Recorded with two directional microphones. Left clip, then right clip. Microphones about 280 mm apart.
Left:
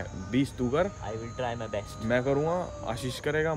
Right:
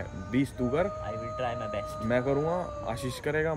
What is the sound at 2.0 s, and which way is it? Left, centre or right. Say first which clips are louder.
Speech: left 1 dB; centre.